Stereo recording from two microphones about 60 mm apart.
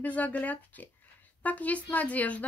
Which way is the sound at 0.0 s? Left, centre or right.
Left.